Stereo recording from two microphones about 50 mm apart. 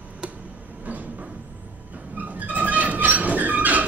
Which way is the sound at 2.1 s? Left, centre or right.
Right.